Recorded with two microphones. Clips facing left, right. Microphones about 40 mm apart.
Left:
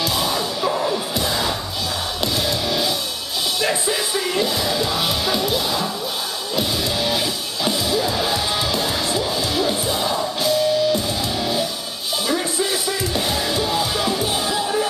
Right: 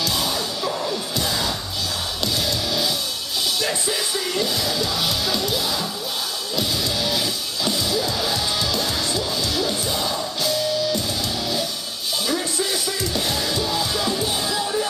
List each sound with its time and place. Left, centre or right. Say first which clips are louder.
0.0 s music: left 2 dB; centre
3.6 s music: left 3 dB; centre
12.3 s music: left 3 dB; centre